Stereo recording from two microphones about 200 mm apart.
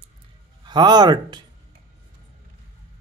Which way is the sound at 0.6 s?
20° right (ahead or behind).